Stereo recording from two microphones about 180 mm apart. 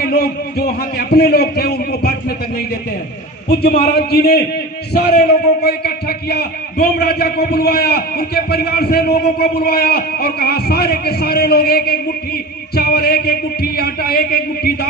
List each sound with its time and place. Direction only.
0.0 s a man's voice: 60° left (ahead or behind)